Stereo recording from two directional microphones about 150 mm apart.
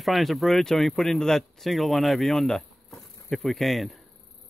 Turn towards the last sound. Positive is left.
turn(degrees=0)  # may be behind; listen again after turning